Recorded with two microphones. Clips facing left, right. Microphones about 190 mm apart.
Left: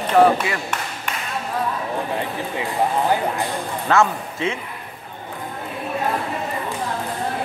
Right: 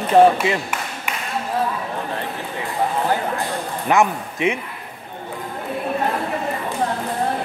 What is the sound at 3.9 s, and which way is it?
Speech, 15° right (ahead or behind).